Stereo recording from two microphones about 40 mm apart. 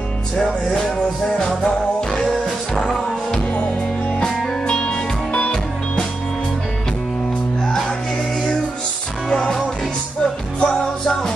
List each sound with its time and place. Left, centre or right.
0.4 s music: centre
3.3 s music: left
10.6 s music: left